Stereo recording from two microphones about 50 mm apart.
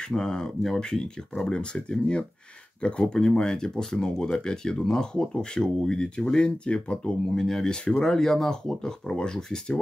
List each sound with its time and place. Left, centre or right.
0.0 s speech: centre
7.3 s speech: centre